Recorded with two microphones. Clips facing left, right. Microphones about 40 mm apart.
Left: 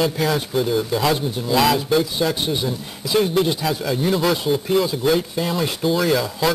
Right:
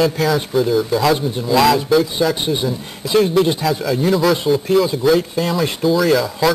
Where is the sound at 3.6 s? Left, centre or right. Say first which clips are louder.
Right 4 dB; centre.